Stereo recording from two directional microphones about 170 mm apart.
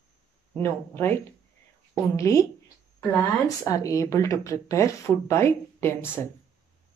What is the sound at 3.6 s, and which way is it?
Speech, 20° left (ahead or behind).